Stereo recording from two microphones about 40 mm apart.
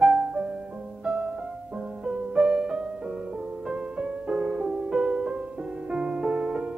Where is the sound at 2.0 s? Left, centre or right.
Centre.